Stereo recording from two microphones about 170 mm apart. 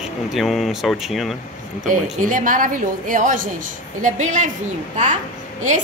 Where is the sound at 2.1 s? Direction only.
50° right (ahead or behind).